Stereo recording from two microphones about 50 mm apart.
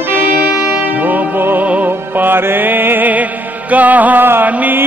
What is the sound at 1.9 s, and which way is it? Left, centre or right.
Music, right.